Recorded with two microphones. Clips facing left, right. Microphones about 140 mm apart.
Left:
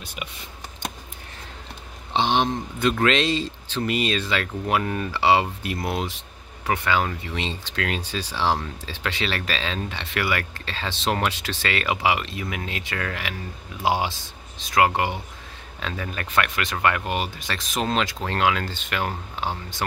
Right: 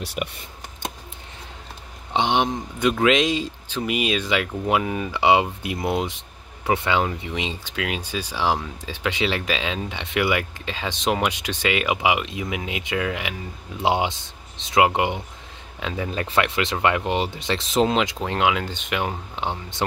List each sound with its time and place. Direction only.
0.0 s speech: 70° right (ahead or behind)
2.1 s speech: 15° right (ahead or behind)